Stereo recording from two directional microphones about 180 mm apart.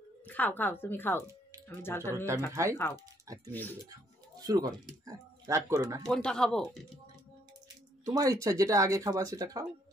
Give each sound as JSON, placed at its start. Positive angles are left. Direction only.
{"t": 0.3, "sound": "a woman's voice", "side_deg": 10}
{"t": 2.1, "sound": "speech", "side_deg": -15}
{"t": 6.0, "sound": "speech", "side_deg": 5}
{"t": 8.0, "sound": "speech", "side_deg": -20}